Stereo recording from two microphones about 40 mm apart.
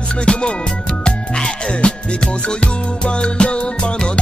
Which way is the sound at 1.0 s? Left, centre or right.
Centre.